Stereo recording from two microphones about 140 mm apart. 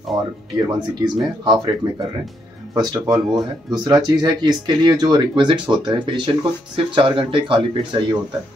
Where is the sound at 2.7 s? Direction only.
25° right (ahead or behind).